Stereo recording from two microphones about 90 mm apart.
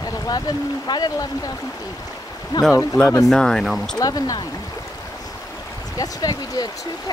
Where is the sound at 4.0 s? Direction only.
45° left (ahead or behind).